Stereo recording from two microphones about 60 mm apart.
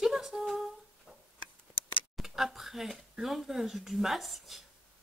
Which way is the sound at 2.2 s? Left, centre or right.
Centre.